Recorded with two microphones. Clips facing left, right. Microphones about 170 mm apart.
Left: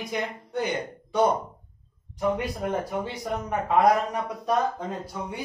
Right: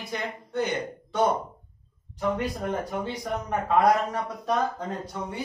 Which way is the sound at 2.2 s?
10° left (ahead or behind).